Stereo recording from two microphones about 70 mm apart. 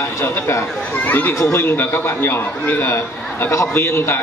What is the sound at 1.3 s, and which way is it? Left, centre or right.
A man's voice, left.